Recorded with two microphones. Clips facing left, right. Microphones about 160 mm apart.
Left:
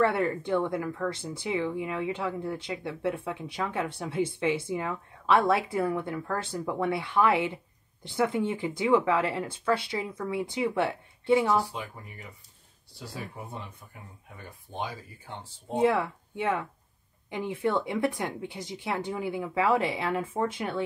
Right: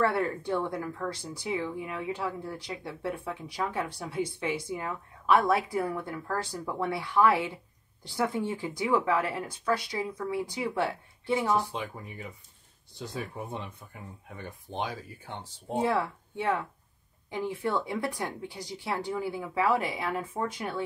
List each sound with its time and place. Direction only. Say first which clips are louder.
0.0 s speech: left 2 dB; 20° left (ahead or behind)
13.4 s speech: right 3 dB; 20° right (ahead or behind)
14.7 s speech: right 1 dB; 20° right (ahead or behind)
15.7 s speech: left 3 dB; 20° left (ahead or behind)